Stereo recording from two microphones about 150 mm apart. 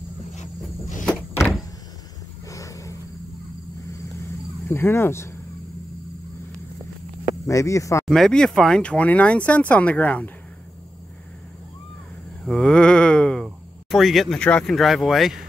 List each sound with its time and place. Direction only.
0.4 s a sound: 55° left (ahead or behind)
1.0 s door: 15° left (ahead or behind)
2.5 s a sound: 20° left (ahead or behind)
4.6 s speech: 15° left (ahead or behind)
7.4 s speech: 20° left (ahead or behind)
8.1 s speech: 5° left (ahead or behind)
12.4 s speech: 5° left (ahead or behind)